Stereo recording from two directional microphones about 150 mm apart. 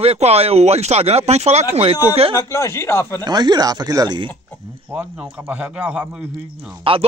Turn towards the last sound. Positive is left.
turn(degrees=-35)  # may be behind; listen again after turning